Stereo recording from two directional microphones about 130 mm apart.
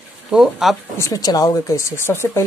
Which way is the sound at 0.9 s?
25° left (ahead or behind).